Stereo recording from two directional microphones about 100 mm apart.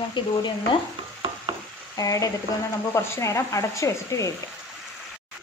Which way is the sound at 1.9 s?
35° left (ahead or behind).